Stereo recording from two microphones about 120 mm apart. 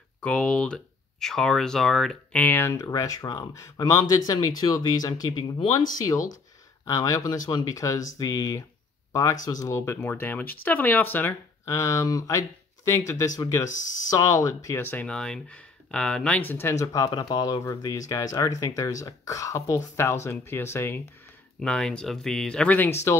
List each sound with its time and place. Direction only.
0.2 s speech: 5° left (ahead or behind)
2.4 s speech: 20° left (ahead or behind)
2.8 s speech: 30° left (ahead or behind)
6.8 s speech: 30° left (ahead or behind)
13.7 s speech: 90° left
14.1 s speech: 25° left (ahead or behind)
14.8 s speech: 15° left (ahead or behind)
21.5 s speech: 5° left (ahead or behind)